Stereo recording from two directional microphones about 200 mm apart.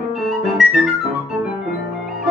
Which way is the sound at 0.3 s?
Centre (ahead or behind).